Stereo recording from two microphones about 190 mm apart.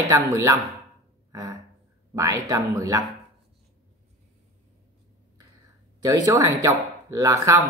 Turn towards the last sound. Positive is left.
turn(degrees=-15)  # may be behind; listen again after turning